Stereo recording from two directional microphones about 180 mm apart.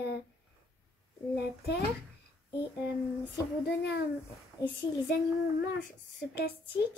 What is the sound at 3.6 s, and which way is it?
Speech, 60° left (ahead or behind).